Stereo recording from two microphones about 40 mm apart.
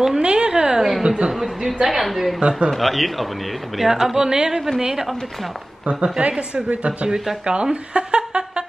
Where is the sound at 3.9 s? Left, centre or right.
Centre.